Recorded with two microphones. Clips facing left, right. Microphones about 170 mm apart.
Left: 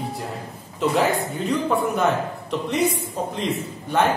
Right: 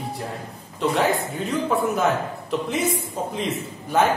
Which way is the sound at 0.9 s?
Centre (ahead or behind).